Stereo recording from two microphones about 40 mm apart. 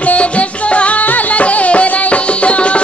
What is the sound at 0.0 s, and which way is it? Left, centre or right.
Music, left.